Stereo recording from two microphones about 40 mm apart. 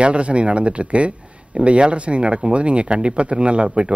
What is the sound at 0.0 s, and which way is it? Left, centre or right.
A man's voice, right.